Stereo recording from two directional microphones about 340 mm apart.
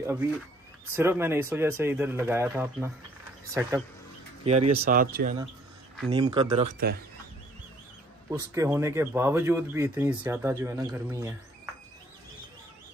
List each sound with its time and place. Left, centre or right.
0.0 s speech: centre
4.4 s speech: centre
6.1 s speech: centre
8.3 s speech: centre